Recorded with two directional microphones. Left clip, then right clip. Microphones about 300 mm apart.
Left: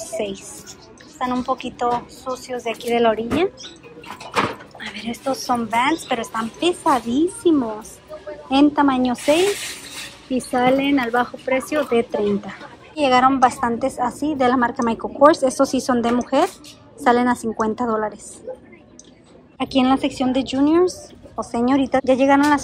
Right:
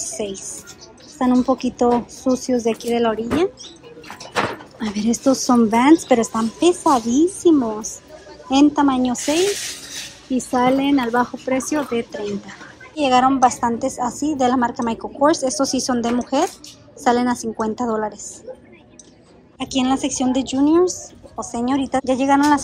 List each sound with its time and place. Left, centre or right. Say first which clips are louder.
0.0 s a woman's voice: left 1 dB; centre
4.7 s a woman's voice: right 6 dB; centre
19.6 s a woman's voice: left 2 dB; centre